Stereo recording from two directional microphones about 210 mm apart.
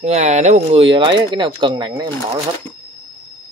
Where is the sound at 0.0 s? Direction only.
30° right (ahead or behind).